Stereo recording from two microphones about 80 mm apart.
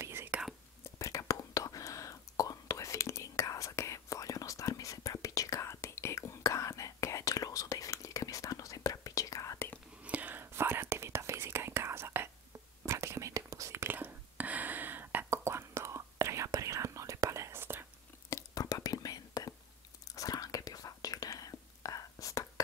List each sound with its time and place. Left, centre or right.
0.0 s whispering: right
0.8 s whispering: left
10.0 s whispering: centre; by 13.9 s right
13.9 s whispering: right
15.2 s whispering: right
18.3 s whispering: left